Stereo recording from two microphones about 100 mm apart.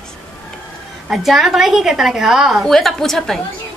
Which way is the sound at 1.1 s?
5° right (ahead or behind).